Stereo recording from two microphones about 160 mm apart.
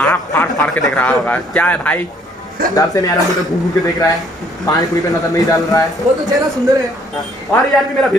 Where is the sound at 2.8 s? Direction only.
25° left (ahead or behind).